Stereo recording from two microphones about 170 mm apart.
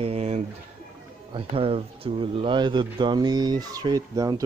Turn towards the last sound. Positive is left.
turn(degrees=-20)  # may be behind; listen again after turning